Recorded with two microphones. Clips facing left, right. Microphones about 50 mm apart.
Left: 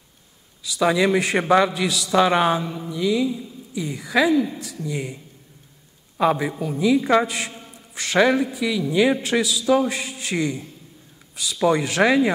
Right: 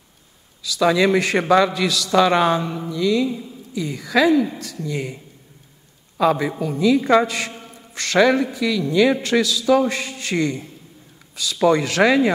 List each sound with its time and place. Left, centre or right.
0.7 s a man's voice: centre
3.3 s a woman's voice: right
3.7 s a man's voice: centre
6.6 s a man's voice: centre
8.6 s a man's voice: centre
11.7 s a man's voice: centre